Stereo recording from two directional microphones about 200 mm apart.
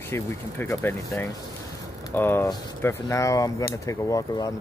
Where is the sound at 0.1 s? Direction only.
15° left (ahead or behind).